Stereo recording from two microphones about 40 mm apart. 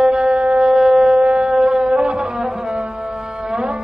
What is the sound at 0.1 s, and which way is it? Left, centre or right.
Shofar, right.